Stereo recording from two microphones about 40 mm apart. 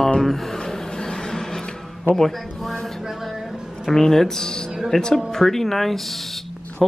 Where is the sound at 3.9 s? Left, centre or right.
Centre.